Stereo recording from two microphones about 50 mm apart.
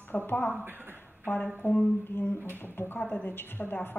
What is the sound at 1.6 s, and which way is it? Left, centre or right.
A woman's voice, left.